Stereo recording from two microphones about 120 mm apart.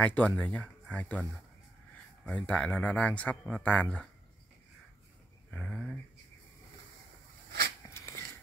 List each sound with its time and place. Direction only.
0.0 s speech: 10° left (ahead or behind)
5.5 s speech: 5° left (ahead or behind)
7.9 s a sound: 20° left (ahead or behind)